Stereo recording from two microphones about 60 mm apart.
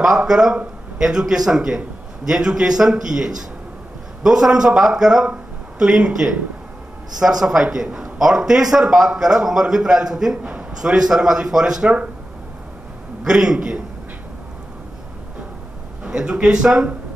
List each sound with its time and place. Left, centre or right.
0.2 s a man's voice: centre
13.2 s a man's voice: centre
16.0 s a man's voice: centre